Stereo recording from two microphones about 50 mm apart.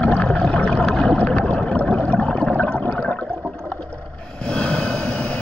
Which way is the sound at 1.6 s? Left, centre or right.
Left.